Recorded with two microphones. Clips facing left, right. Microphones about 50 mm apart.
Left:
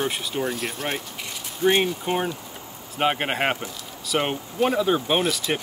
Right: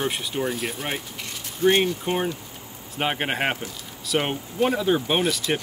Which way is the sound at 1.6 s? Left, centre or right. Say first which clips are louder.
Right 1 dB; centre.